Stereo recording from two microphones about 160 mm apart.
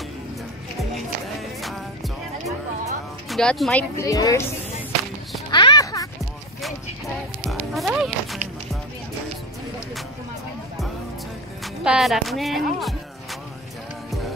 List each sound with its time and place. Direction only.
3.3 s speech: centre (ahead or behind)
3.9 s a woman's voice: 20° left (ahead or behind)
5.5 s a sound: 30° left (ahead or behind)
7.4 s music: centre (ahead or behind)
11.6 s music: 5° right (ahead or behind)